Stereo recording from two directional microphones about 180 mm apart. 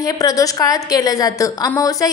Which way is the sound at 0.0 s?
20° left (ahead or behind).